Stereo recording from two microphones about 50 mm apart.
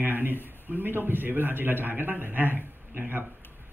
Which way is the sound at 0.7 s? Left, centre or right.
Right.